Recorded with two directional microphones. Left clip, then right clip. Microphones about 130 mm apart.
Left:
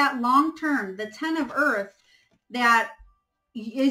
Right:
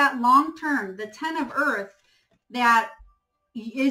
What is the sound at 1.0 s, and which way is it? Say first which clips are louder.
Speech: left 1 dB; 20° right (ahead or behind).